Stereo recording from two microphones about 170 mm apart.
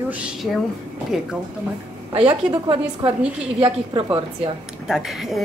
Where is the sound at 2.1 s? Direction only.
30° right (ahead or behind).